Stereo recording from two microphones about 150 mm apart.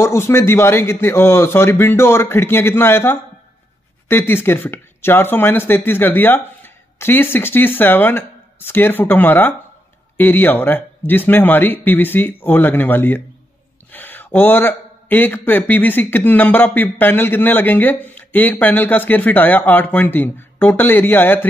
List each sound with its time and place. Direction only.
0.0 s speech: 20° left (ahead or behind)